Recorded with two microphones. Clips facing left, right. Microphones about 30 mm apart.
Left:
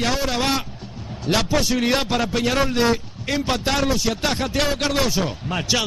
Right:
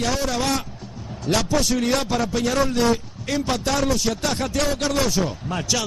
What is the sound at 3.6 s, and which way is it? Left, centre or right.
A man's voice, left.